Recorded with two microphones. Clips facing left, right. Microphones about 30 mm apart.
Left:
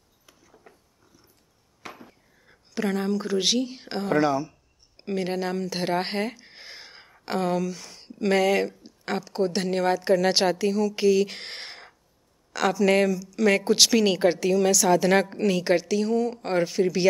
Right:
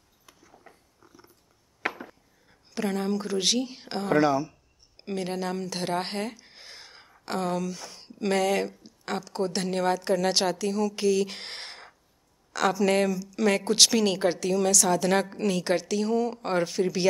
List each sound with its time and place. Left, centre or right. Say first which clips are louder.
0.3 s a sound: even; centre
1.8 s chop: right 10 dB; right
2.7 s speech: left 2 dB; centre
10.7 s speech: left 3 dB; centre
13.2 s speech: left 2 dB; centre
13.5 s a woman's voice: left 2 dB; centre